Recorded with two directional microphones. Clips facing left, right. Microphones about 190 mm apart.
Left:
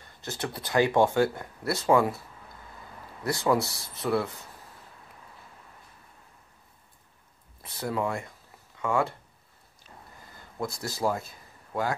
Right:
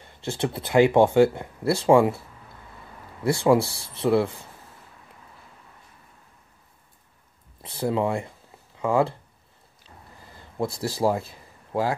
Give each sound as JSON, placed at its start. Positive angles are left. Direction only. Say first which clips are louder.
{"t": 0.0, "sound": "speech", "louder": "right 7 dB", "side_deg": -25}
{"t": 3.3, "sound": "speech", "louder": "right 6 dB", "side_deg": -30}
{"t": 7.6, "sound": "speech", "louder": "right 5 dB", "side_deg": -30}
{"t": 9.8, "sound": "a sound", "louder": "right 1 dB", "side_deg": -30}